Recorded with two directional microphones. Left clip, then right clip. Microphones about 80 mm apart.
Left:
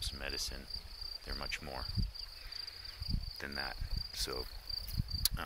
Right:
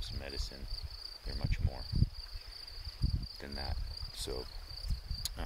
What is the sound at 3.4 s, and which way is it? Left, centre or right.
Cricket, right.